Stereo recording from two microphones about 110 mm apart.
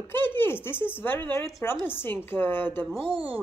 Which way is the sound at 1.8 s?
20° left (ahead or behind).